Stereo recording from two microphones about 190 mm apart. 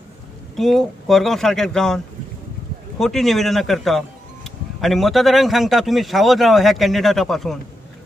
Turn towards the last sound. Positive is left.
turn(degrees=0)  # may be behind; listen again after turning